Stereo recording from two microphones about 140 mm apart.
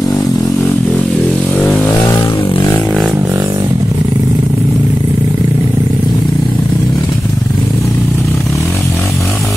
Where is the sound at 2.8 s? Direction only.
Centre (ahead or behind).